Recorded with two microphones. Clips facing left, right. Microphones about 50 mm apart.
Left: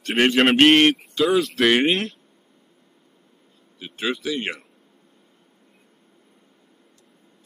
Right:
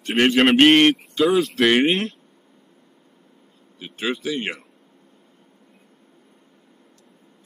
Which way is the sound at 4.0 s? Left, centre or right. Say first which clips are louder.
Even; right.